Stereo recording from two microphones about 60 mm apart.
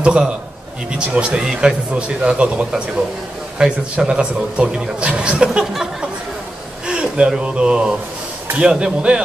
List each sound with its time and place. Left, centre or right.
0.0 s a man's voice: centre
1.4 s speech: centre